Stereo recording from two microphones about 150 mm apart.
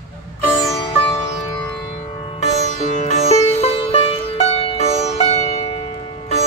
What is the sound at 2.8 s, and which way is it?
Music, 50° left (ahead or behind).